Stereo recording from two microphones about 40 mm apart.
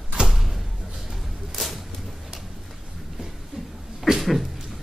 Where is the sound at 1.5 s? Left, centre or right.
Centre.